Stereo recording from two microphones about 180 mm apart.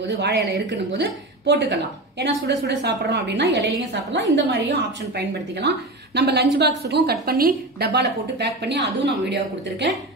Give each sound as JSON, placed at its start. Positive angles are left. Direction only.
{"t": 0.1, "sound": "a woman's voice", "side_deg": -70}
{"t": 8.6, "sound": "a woman's voice", "side_deg": -75}